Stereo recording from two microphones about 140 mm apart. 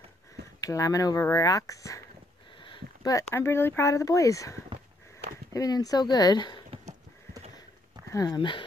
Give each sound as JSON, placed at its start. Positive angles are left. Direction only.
{"t": 0.6, "sound": "speech", "side_deg": 25}
{"t": 8.1, "sound": "speech", "side_deg": 25}